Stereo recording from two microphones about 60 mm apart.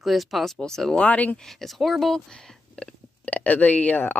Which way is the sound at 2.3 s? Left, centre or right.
Centre.